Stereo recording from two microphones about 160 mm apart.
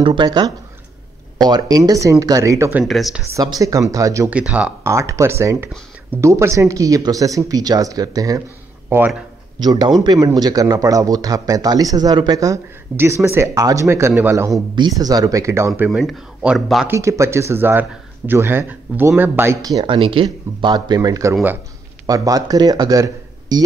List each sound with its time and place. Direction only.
0.0 s speech: 30° right (ahead or behind)
2.8 s speech: centre (ahead or behind)
3.3 s speech: 20° right (ahead or behind)
4.3 s speech: 10° right (ahead or behind)
4.9 s speech: 20° right (ahead or behind)
8.8 s speech: 10° right (ahead or behind)
9.6 s speech: 25° right (ahead or behind)
15.9 s speech: centre (ahead or behind)
16.8 s speech: 15° right (ahead or behind)